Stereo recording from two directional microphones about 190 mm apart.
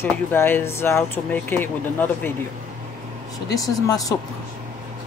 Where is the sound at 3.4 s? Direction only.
20° left (ahead or behind).